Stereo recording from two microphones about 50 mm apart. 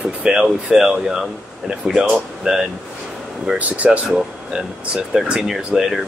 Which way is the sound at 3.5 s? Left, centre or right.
Right.